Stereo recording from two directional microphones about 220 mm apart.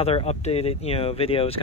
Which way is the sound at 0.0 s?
25° left (ahead or behind).